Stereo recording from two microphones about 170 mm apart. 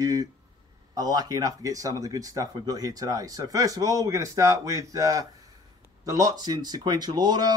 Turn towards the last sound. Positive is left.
turn(degrees=-25)  # may be behind; listen again after turning